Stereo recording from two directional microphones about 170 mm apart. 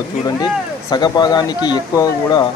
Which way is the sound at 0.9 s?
25° left (ahead or behind).